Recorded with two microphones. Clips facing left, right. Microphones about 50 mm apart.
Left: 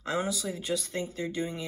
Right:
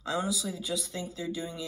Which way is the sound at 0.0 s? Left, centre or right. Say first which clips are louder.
Left 1 dB; left.